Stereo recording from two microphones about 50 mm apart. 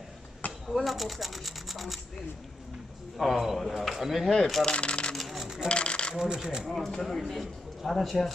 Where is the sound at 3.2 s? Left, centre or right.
Centre.